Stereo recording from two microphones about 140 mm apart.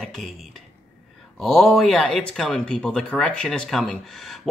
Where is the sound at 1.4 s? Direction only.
Centre (ahead or behind).